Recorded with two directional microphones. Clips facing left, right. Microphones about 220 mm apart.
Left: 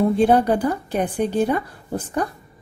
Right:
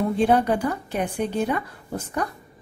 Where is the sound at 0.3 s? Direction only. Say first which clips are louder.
Left 3 dB; 35° left (ahead or behind).